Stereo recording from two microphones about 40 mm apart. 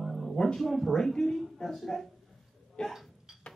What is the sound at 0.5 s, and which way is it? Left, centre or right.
A woman's voice, centre.